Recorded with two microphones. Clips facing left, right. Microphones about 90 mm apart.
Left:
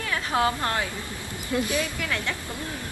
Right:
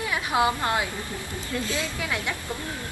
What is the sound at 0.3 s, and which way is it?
Speech, 15° right (ahead or behind).